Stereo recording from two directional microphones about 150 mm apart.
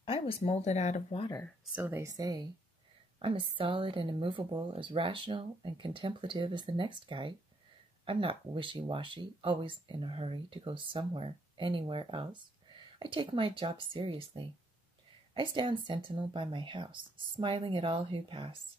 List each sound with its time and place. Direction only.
0.0 s a sound: 40° left (ahead or behind)
0.5 s speech: 50° left (ahead or behind)
1.7 s speech: 15° right (ahead or behind); by 18.6 s 35° right (ahead or behind)